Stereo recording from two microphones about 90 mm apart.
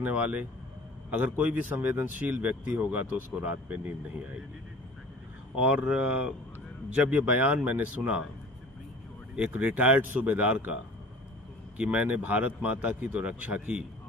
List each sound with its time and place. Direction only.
0.0 s speech: 15° right (ahead or behind)
5.6 s speech: 15° right (ahead or behind)
9.3 s speech: 10° right (ahead or behind)